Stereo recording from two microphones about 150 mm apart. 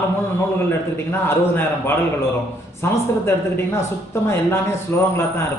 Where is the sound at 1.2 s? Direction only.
15° left (ahead or behind).